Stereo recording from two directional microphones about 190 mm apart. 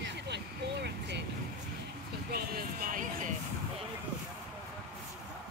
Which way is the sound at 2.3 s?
55° right (ahead or behind).